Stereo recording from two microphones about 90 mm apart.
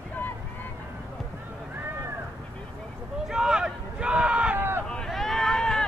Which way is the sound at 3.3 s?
5° right (ahead or behind).